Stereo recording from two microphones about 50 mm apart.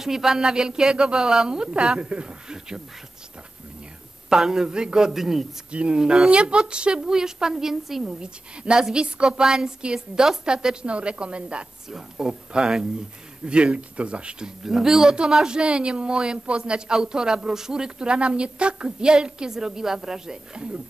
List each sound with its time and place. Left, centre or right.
0.0 s speech: centre
4.3 s speech: centre
5.7 s speech: right
14.6 s speech: centre